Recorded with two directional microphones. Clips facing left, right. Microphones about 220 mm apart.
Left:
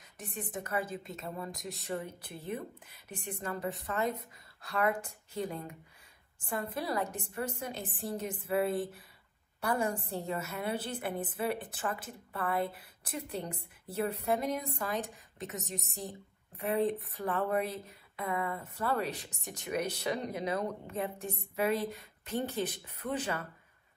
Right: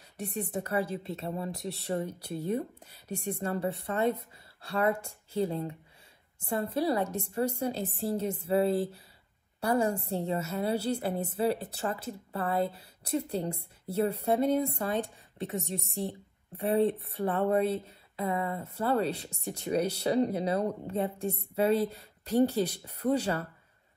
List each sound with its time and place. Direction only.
0.2 s a woman's voice: 30° right (ahead or behind)
16.0 s speech: 30° right (ahead or behind)